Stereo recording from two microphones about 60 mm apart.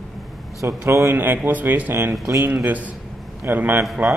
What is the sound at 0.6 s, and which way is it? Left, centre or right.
Speech, right.